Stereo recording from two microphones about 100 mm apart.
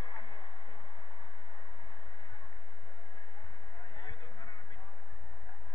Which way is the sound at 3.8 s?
45° left (ahead or behind).